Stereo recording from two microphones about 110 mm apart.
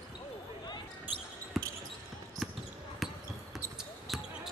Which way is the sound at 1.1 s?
15° right (ahead or behind).